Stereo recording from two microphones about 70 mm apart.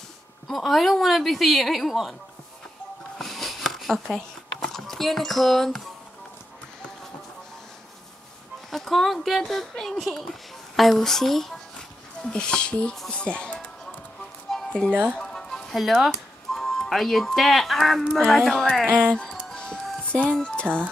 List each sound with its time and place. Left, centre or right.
0.5 s speech: centre
3.2 s a sound: centre
8.6 s speech: centre
14.5 s music: centre
15.7 s speech: centre
18.9 s speech: right
19.5 s music: centre
20.6 s speech: right